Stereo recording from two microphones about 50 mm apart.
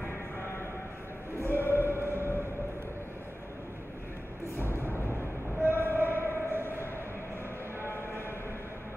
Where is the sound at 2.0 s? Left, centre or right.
Left.